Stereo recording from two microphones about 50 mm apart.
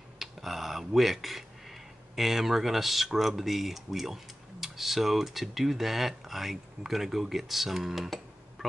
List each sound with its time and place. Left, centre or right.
0.2 s speech: centre